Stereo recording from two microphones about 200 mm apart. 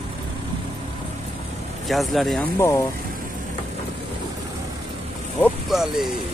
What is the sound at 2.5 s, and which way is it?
Speech, 15° left (ahead or behind).